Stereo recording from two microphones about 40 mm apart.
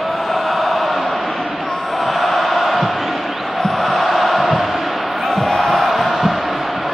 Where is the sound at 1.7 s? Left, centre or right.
Centre.